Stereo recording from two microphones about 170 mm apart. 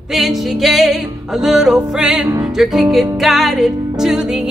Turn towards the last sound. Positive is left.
turn(degrees=-5)  # may be behind; listen again after turning